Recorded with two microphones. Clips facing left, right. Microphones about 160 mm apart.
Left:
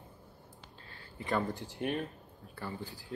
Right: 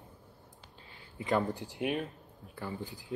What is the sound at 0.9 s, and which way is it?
Speech, 20° right (ahead or behind).